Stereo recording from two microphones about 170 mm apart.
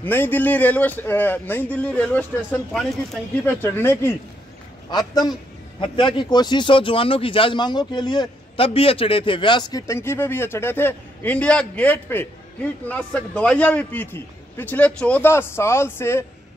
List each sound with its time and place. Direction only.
0.0 s a man's voice: 10° left (ahead or behind)
3.4 s a man's voice: 10° left (ahead or behind)